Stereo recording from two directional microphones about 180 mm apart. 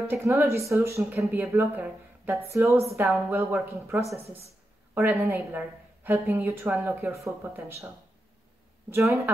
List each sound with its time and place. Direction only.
0.1 s a woman's voice: 10° right (ahead or behind)